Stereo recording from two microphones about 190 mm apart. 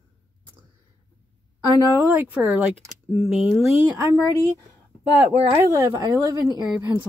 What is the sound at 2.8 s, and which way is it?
Speech, 40° left (ahead or behind).